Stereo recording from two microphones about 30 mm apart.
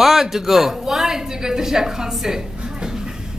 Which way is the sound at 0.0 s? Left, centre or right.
Centre.